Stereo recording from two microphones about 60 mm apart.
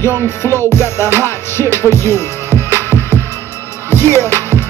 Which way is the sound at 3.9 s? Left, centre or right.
Left.